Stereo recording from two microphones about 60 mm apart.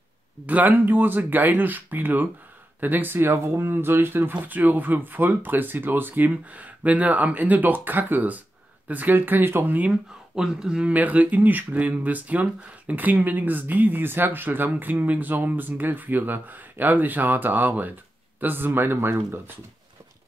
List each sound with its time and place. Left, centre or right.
0.5 s speech: right
3.2 s speech: right
10.3 s speech: centre
10.9 s speech: right